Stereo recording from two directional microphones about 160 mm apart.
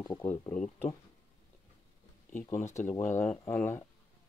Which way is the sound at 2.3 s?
15° left (ahead or behind).